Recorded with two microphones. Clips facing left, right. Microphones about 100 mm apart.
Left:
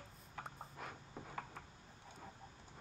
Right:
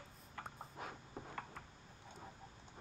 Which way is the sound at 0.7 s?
20° right (ahead or behind).